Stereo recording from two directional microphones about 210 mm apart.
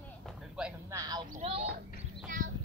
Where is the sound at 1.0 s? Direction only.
20° right (ahead or behind).